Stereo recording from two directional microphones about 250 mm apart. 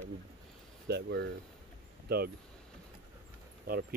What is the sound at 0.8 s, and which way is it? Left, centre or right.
Speech, right.